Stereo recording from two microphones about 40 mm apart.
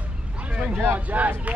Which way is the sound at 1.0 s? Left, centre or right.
Right.